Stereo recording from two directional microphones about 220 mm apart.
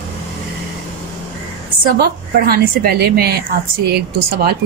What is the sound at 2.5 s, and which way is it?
A woman's voice, 45° right (ahead or behind).